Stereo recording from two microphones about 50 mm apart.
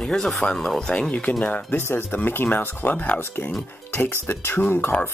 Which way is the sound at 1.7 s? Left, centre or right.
Left.